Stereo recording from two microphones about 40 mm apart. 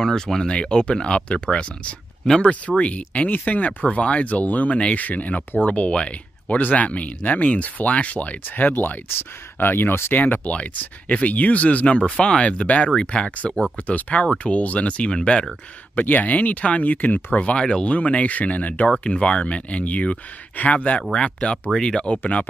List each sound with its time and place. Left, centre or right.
0.0 s speech: centre
0.5 s speech: left
8.5 s speech: left
10.1 s speech: left
13.8 s speech: left
16.1 s speech: left
17.6 s speech: left
18.9 s speech: left